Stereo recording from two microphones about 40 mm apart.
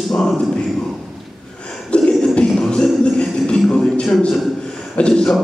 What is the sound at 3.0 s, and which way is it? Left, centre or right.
Music, left.